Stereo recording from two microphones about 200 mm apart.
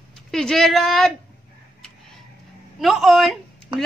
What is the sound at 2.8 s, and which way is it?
Speech, centre (ahead or behind).